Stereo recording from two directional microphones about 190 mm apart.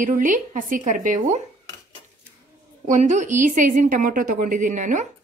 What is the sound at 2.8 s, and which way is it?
A woman's voice, 40° right (ahead or behind).